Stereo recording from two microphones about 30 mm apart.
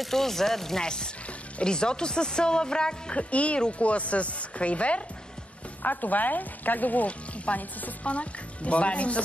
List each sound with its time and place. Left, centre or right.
0.1 s speech: centre
0.8 s speech: left
3.2 s speech: left
5.8 s speech: left
7.5 s speech: left